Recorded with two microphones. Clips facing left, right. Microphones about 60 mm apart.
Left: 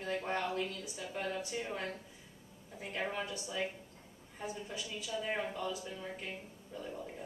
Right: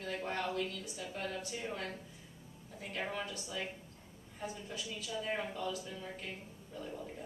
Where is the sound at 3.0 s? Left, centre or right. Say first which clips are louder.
Left 2 dB; centre.